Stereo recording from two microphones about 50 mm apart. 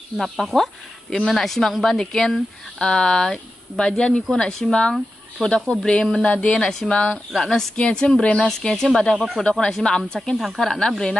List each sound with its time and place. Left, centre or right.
0.2 s speech: centre
7.3 s speech: centre
7.7 s speech: centre
8.5 s speech: centre
9.4 s speech: left
10.3 s speech: centre
10.6 s speech: centre